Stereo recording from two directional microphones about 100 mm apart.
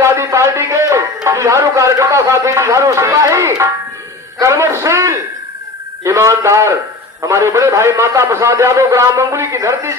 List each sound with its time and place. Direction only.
0.0 s a man's voice: 30° right (ahead or behind)